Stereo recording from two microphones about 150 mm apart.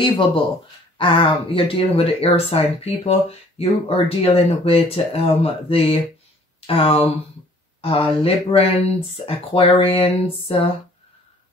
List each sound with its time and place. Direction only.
0.9 s speech: 35° left (ahead or behind)